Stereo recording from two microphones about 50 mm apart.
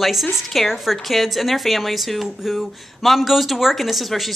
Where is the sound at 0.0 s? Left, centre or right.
Centre.